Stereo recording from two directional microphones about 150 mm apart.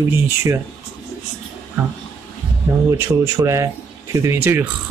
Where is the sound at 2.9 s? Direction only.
20° right (ahead or behind).